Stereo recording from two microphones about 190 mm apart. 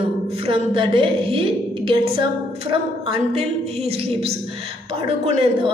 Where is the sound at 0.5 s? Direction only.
30° right (ahead or behind).